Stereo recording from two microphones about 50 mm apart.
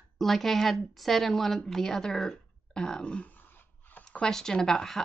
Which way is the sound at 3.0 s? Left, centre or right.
Left.